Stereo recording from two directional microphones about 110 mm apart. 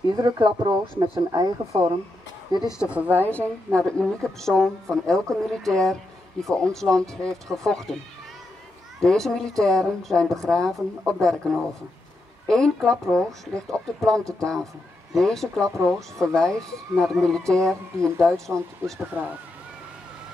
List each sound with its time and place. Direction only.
0.1 s speech: 40° right (ahead or behind)
2.8 s a woman's voice: 10° right (ahead or behind)
3.2 s a woman's voice: 15° left (ahead or behind)
9.0 s speech: 5° left (ahead or behind)
19.2 s a woman's voice: 15° right (ahead or behind)